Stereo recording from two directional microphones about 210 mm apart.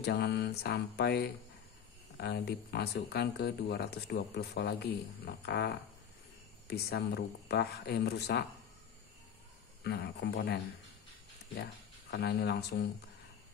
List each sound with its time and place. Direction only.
0.0 s speech: 50° left (ahead or behind)
9.8 s speech: 55° left (ahead or behind)